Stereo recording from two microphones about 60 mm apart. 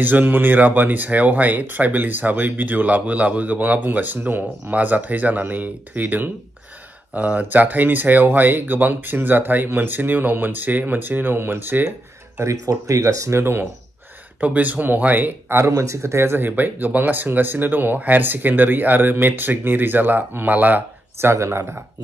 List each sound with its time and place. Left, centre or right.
0.0 s speech: right
12.6 s speech: right
13.4 s speech: right
14.4 s speech: right
15.6 s speech: right
21.2 s speech: right